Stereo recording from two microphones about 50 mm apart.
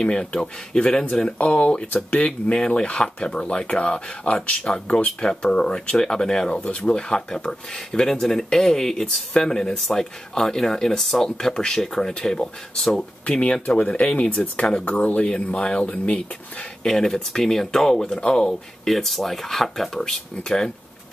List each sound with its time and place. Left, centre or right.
0.0 s speech: centre
6.6 s speech: left
16.8 s speech: centre